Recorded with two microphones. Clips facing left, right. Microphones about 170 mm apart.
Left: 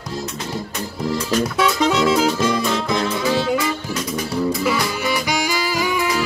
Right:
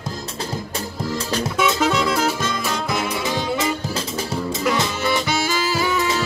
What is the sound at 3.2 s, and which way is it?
Music, 20° right (ahead or behind).